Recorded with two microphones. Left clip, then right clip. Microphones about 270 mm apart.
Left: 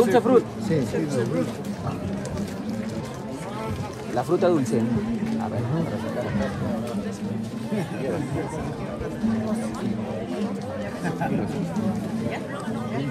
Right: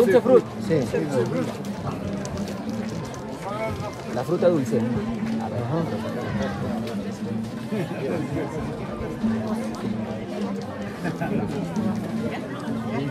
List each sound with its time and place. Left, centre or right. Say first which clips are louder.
0.0 s speech: right 2 dB; left
4.4 s speech: right 3 dB; left